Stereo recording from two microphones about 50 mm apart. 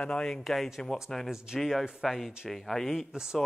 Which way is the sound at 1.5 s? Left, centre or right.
Centre.